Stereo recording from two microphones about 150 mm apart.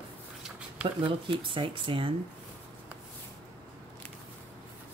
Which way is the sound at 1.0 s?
35° right (ahead or behind).